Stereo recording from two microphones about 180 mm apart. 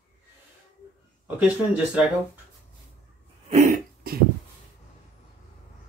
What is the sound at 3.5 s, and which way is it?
Cough, 40° right (ahead or behind).